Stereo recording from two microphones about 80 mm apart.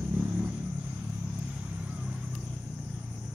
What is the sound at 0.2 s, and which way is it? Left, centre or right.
Vehicle, centre.